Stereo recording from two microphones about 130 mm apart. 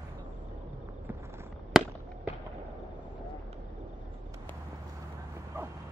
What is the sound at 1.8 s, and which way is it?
Fireworks, centre (ahead or behind).